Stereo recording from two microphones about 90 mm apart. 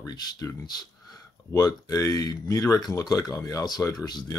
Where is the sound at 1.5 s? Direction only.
35° left (ahead or behind).